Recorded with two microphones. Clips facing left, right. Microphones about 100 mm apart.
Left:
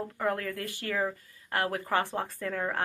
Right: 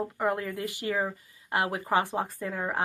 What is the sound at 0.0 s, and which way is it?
Speech, 20° right (ahead or behind).